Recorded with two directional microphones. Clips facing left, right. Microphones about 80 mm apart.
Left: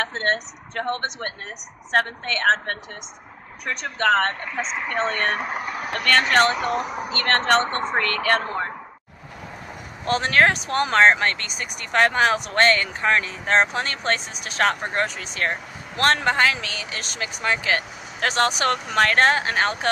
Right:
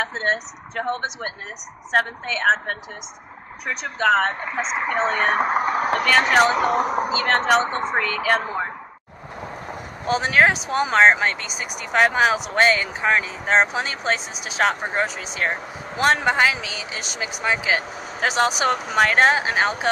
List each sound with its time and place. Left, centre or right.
0.0 s speech: centre
4.5 s speech: right
4.8 s speech: centre
5.3 s speech: right
5.9 s speech: centre
6.8 s speech: right
7.1 s speech: centre
10.0 s speech: centre